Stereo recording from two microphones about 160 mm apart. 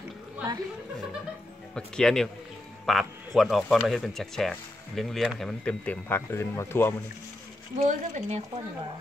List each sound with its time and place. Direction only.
1.8 s speech: 5° left (ahead or behind)
7.7 s speech: 45° right (ahead or behind)